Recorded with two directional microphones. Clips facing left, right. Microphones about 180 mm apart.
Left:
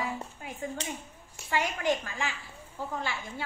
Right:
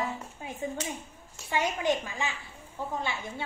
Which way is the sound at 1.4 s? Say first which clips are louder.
Right 1 dB; 20° right (ahead or behind).